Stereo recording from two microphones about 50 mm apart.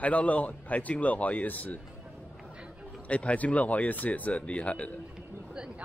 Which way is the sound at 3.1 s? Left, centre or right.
Left.